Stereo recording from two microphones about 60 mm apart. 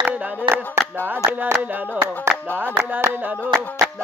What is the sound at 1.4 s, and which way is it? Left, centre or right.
Music, right.